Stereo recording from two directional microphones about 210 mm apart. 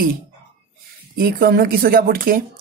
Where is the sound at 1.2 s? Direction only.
45° right (ahead or behind).